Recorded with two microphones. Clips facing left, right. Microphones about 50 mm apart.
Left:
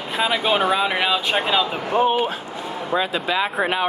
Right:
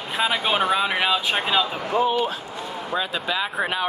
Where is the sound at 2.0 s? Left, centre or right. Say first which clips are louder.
Left 3 dB; left.